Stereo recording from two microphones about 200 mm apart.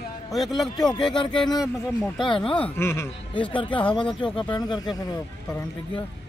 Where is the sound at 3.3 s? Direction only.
25° left (ahead or behind).